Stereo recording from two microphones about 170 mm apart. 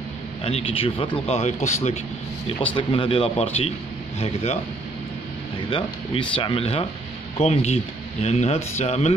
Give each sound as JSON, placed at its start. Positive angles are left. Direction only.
{"t": 0.4, "sound": "speech", "side_deg": 35}
{"t": 2.7, "sound": "speech", "side_deg": 30}
{"t": 5.7, "sound": "speech", "side_deg": 30}